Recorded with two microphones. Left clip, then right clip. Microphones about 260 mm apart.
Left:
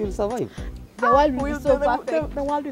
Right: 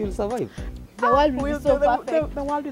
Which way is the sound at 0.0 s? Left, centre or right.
Left.